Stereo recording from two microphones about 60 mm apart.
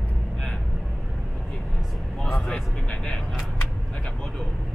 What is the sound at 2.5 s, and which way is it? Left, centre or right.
Speech, centre.